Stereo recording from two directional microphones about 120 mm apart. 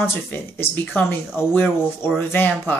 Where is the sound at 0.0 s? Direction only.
20° left (ahead or behind).